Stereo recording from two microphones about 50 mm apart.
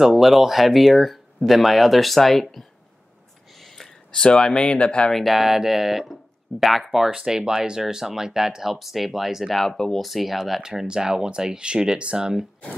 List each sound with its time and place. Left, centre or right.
0.0 s speech: centre
3.5 s a sound: centre
4.1 s speech: centre
5.1 s speech: centre